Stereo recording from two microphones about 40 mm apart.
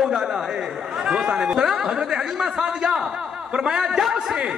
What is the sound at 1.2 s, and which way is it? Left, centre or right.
A man's voice, right.